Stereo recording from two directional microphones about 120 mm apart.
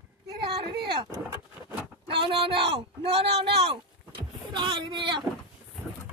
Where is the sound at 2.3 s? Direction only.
50° right (ahead or behind).